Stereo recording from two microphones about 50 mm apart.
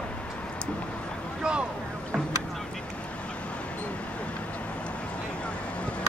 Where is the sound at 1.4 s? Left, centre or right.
Centre.